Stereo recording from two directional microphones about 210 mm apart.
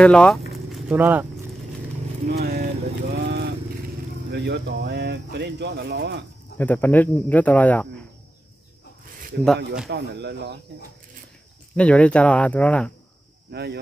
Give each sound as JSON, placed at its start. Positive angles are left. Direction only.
{"t": 0.0, "sound": "speech", "side_deg": 5}
{"t": 0.7, "sound": "a sound", "side_deg": -5}
{"t": 2.2, "sound": "vehicle", "side_deg": -50}
{"t": 4.3, "sound": "speech", "side_deg": -55}
{"t": 6.6, "sound": "speech", "side_deg": 10}
{"t": 9.8, "sound": "speech", "side_deg": -55}
{"t": 11.7, "sound": "speech", "side_deg": 5}
{"t": 13.5, "sound": "speech", "side_deg": -50}